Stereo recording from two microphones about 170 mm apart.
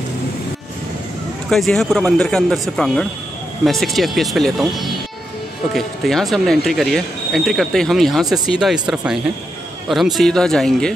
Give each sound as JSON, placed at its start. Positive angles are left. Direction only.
{"t": 1.5, "sound": "speech", "side_deg": 0}